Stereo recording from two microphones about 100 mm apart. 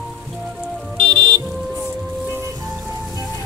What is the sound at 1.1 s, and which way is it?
Music, 60° right (ahead or behind).